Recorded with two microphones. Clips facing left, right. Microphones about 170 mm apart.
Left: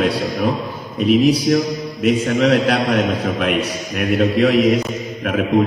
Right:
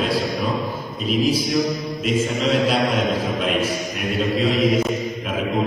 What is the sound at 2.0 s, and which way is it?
Speech, 60° left (ahead or behind).